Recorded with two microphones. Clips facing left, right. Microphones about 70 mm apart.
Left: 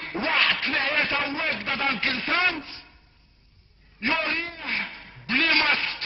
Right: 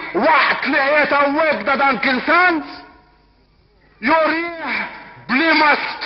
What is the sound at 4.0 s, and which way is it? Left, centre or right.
A man's voice, right.